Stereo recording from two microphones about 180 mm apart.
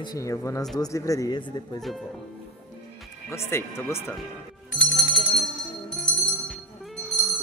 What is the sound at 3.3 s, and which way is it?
Speech, 15° left (ahead or behind).